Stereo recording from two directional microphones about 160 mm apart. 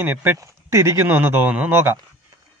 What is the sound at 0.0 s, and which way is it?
Speech, 15° right (ahead or behind).